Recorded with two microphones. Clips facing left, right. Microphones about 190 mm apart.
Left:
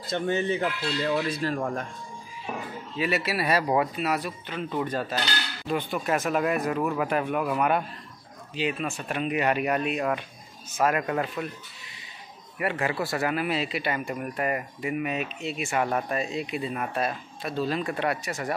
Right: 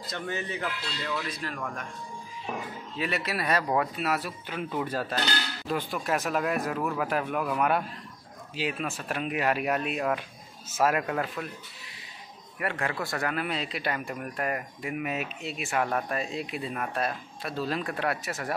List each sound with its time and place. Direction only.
0.0 s speech: 25° left (ahead or behind)
3.0 s a man's voice: 5° left (ahead or behind)
12.5 s a man's voice: 5° left (ahead or behind)